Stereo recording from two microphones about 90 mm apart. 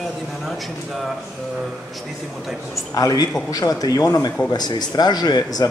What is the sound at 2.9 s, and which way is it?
A man's voice, 40° left (ahead or behind).